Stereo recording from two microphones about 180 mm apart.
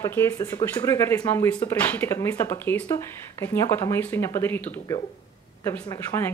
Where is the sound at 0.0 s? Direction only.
15° left (ahead or behind).